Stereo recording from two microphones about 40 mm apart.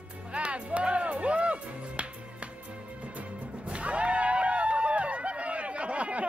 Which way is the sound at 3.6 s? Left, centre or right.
Right.